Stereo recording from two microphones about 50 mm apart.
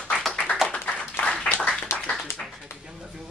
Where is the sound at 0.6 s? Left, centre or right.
Centre.